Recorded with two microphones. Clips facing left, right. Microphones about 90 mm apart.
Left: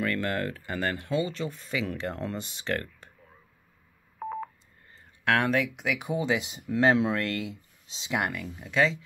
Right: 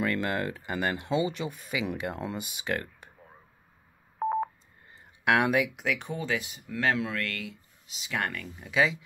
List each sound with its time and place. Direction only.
0.0 s speech: 15° right (ahead or behind)
4.2 s telephone dialing: 35° right (ahead or behind)
4.9 s a sound: 15° right (ahead or behind)
5.9 s speech: 10° left (ahead or behind)
6.1 s speech: 20° left (ahead or behind)
8.1 s speech: 15° left (ahead or behind); by 8.9 s centre (ahead or behind)